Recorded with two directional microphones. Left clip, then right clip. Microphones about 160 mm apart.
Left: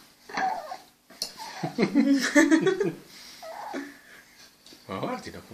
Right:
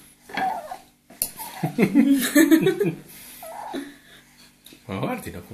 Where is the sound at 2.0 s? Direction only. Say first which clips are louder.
Right 2 dB; 10° left (ahead or behind).